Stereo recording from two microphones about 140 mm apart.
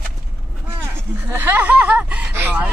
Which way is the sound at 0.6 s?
15° right (ahead or behind).